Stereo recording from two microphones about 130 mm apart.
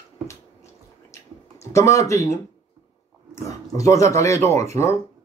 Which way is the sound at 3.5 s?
25° left (ahead or behind).